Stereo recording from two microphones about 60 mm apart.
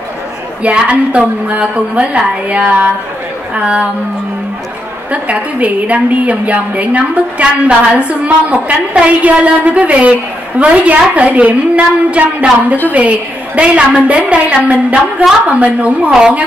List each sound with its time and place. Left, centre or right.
0.6 s a woman's voice: right
5.1 s a woman's voice: right
16.1 s a woman's voice: centre